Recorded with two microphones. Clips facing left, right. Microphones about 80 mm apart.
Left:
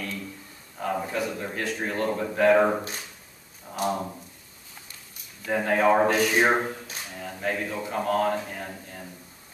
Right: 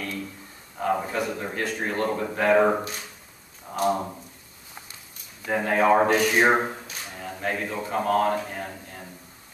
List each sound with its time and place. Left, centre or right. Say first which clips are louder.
0.7 s a man's voice: right 3 dB; centre
3.9 s speech: right 3 dB; centre
5.6 s speech: right 1 dB; centre
6.4 s a sound: right 2 dB; centre
7.2 s speech: even; centre
8.4 s a sound: right 2 dB; centre